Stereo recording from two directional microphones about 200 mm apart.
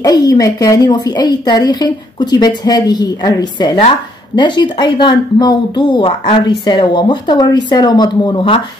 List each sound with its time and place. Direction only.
0.0 s a woman's voice: 20° left (ahead or behind)